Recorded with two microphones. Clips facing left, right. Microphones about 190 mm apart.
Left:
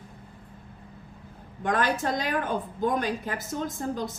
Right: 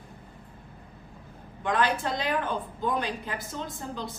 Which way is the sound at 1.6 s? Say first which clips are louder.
Left 1 dB; 45° left (ahead or behind).